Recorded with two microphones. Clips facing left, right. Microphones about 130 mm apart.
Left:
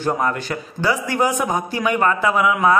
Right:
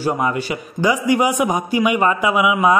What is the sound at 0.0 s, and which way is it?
A man's voice, 10° right (ahead or behind).